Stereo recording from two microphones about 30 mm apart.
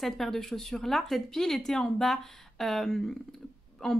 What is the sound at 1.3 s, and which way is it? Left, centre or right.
Speech, centre.